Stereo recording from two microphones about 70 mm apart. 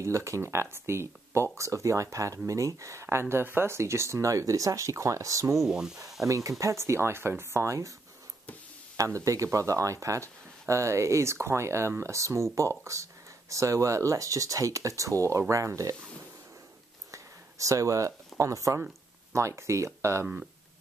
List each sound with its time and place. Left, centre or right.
0.0 s speech: right
5.6 s speech: centre
6.2 s speech: right
8.9 s speech: right
17.1 s a sound: right
19.3 s speech: right